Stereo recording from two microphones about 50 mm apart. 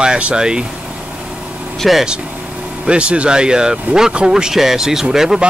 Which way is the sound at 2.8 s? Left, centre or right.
Right.